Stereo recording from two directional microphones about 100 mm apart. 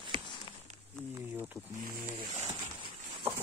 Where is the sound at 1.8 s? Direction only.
40° right (ahead or behind).